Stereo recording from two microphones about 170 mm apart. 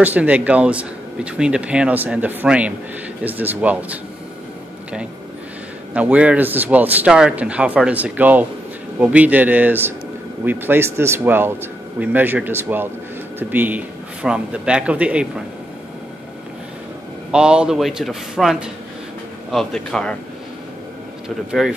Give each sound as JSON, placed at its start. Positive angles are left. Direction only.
{"t": 0.0, "sound": "speech", "side_deg": -10}
{"t": 5.9, "sound": "speech", "side_deg": -10}
{"t": 17.3, "sound": "a man's voice", "side_deg": -5}
{"t": 21.5, "sound": "a man's voice", "side_deg": -5}